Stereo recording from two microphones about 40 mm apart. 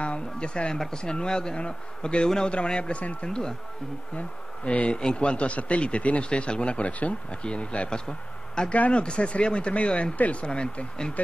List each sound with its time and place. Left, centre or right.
0.0 s speech: left
4.8 s speech: left
8.7 s speech: left
9.0 s speech: left
10.4 s speech: left